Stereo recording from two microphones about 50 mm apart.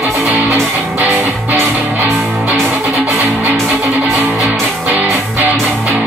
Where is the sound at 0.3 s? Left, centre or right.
Right.